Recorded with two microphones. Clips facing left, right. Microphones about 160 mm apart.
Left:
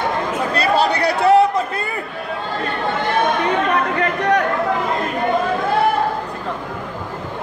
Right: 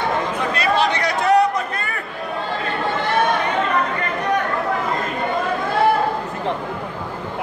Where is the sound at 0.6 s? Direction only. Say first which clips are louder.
Left 3 dB; 35° left (ahead or behind).